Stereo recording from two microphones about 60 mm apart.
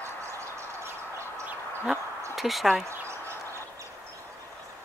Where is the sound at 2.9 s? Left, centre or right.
Right.